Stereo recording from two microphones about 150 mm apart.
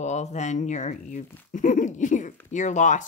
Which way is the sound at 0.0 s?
50° left (ahead or behind).